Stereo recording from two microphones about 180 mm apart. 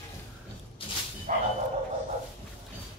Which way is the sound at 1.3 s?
45° right (ahead or behind).